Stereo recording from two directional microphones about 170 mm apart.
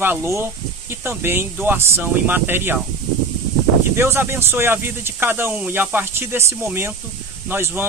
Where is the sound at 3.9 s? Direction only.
15° right (ahead or behind).